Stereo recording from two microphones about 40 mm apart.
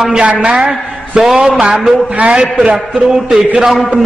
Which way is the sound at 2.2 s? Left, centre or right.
Right.